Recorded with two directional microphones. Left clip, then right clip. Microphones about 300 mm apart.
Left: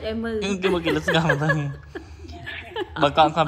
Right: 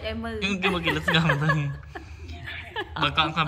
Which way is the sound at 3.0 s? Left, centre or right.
Centre.